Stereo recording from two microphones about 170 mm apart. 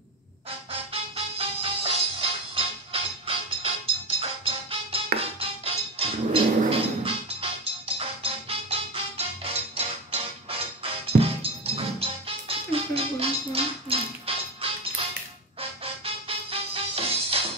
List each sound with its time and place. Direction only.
0.7 s music: 35° right (ahead or behind)